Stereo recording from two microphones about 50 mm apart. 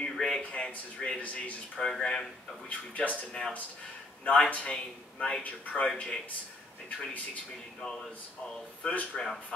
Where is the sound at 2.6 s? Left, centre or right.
Left.